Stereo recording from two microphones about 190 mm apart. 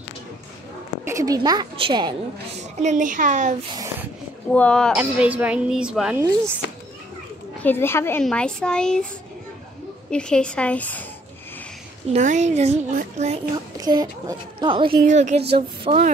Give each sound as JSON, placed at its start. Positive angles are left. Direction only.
{"t": 1.0, "sound": "a woman's voice", "side_deg": -15}
{"t": 2.8, "sound": "speech", "side_deg": -40}
{"t": 3.7, "sound": "speech", "side_deg": -15}
{"t": 4.5, "sound": "a child's voice", "side_deg": 5}
{"t": 4.9, "sound": "speech", "side_deg": -5}
{"t": 6.6, "sound": "children playing", "side_deg": 65}
{"t": 7.6, "sound": "a child's voice", "side_deg": 10}
{"t": 10.1, "sound": "a child's voice", "side_deg": 5}
{"t": 12.1, "sound": "speech", "side_deg": -40}
{"t": 13.7, "sound": "speech", "side_deg": -20}
{"t": 15.0, "sound": "speech", "side_deg": -40}